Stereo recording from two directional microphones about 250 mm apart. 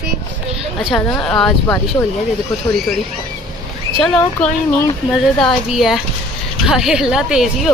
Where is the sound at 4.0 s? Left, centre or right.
Centre.